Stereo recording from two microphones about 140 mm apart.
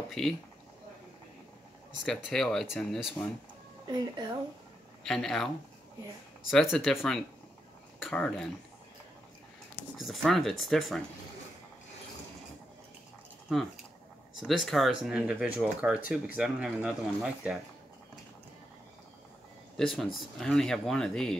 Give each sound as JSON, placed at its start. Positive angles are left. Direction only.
{"t": 0.2, "sound": "speech", "side_deg": 0}
{"t": 2.0, "sound": "speech", "side_deg": 5}
{"t": 3.8, "sound": "a woman's voice", "side_deg": -30}
{"t": 5.0, "sound": "speech", "side_deg": 5}
{"t": 6.5, "sound": "speech", "side_deg": 0}
{"t": 8.1, "sound": "speech", "side_deg": 10}
{"t": 9.9, "sound": "speech", "side_deg": 0}
{"t": 13.5, "sound": "speech", "side_deg": 0}
{"t": 19.8, "sound": "speech", "side_deg": 0}